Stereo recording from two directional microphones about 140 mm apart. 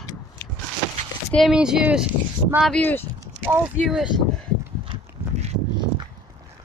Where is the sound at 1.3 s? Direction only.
Centre (ahead or behind).